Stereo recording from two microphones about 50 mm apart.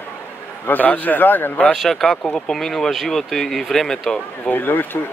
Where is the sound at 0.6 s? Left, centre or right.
Left.